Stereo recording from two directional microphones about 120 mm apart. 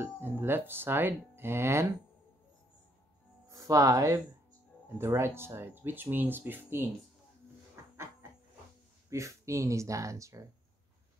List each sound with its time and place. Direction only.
0.0 s speech: 20° right (ahead or behind)
3.4 s speech: 30° right (ahead or behind)
9.1 s speech: 25° right (ahead or behind)